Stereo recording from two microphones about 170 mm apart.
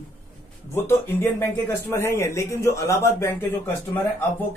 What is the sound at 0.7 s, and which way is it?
Speech, 15° left (ahead or behind).